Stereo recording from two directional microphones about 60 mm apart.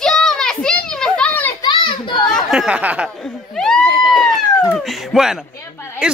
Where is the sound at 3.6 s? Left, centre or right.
Centre.